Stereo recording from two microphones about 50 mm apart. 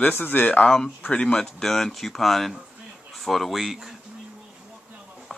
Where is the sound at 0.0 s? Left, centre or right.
Left.